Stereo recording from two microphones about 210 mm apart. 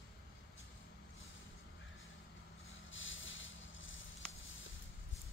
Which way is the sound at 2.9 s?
65° left (ahead or behind).